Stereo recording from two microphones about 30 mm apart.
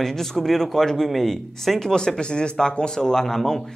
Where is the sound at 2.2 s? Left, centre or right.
Left; by 3.6 s centre.